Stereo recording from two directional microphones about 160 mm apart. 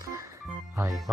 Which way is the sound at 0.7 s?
20° right (ahead or behind).